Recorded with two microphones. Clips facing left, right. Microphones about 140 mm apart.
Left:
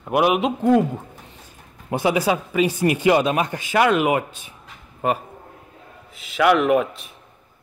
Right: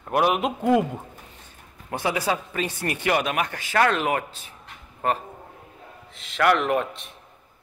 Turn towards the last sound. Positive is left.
turn(degrees=5)  # may be behind; listen again after turning